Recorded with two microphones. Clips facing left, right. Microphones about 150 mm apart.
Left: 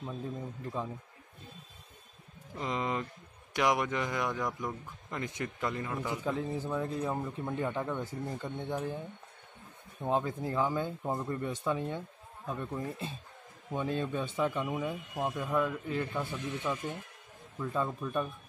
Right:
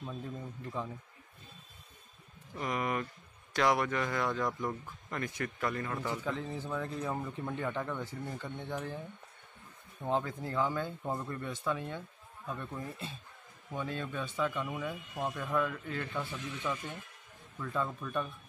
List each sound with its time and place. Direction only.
2.5 s a man's voice: 20° left (ahead or behind)